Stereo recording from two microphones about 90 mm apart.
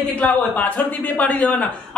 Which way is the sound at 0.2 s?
15° left (ahead or behind).